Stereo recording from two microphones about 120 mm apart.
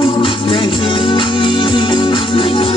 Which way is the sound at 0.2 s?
45° left (ahead or behind).